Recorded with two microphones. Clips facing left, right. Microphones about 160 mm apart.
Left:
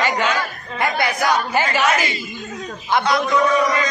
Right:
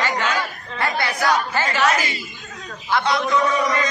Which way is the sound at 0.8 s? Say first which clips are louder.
Left 3 dB; 15° left (ahead or behind).